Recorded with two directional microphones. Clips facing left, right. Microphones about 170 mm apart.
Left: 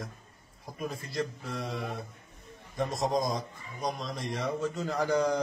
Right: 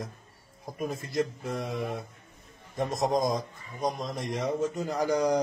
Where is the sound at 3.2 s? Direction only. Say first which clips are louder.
Right 3 dB; 45° right (ahead or behind).